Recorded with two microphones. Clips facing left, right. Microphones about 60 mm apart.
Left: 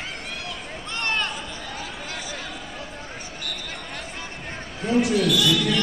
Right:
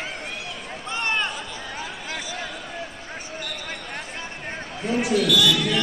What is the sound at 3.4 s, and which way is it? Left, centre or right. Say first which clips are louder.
Basketball bounce: right 1 dB; right.